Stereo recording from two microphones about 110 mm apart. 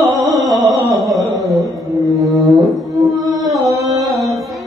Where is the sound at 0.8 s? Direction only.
30° right (ahead or behind).